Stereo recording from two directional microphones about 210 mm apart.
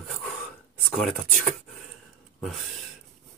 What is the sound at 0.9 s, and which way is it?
Speech, centre (ahead or behind).